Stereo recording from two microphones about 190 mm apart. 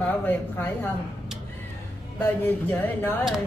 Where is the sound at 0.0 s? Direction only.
10° left (ahead or behind).